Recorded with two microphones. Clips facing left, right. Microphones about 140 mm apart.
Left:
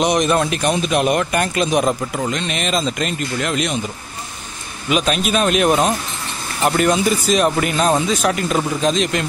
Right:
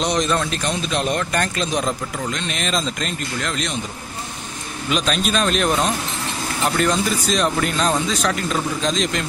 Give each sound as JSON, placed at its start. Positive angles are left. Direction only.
{"t": 0.1, "sound": "speech", "side_deg": 10}
{"t": 4.8, "sound": "speech", "side_deg": 5}